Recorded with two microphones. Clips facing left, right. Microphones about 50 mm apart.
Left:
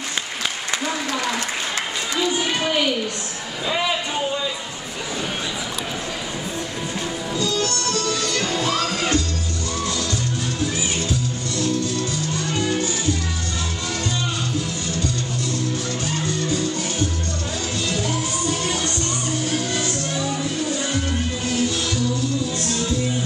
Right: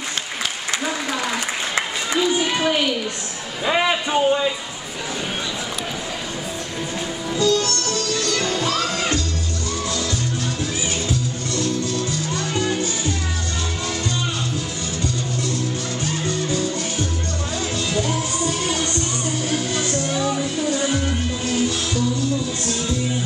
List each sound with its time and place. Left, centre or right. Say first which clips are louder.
2.4 s a sound: right 2 dB; centre
3.6 s a man's voice: right 4 dB; right
7.4 s music: right 5 dB; centre
12.4 s music: right 1 dB; centre
17.8 s music: right 1 dB; centre